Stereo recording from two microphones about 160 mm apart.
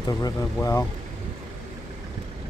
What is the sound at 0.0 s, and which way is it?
Speech, 20° left (ahead or behind).